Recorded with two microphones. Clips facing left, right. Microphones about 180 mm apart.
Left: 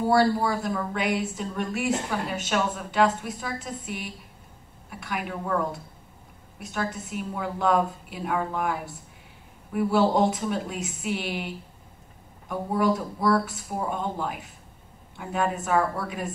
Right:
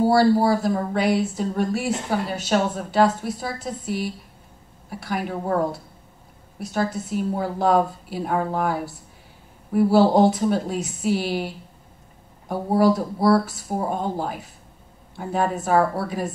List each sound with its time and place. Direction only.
0.0 s speech: 35° right (ahead or behind)